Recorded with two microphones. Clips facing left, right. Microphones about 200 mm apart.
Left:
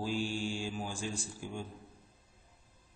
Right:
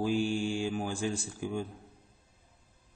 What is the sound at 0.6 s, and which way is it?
Speech, 60° right (ahead or behind).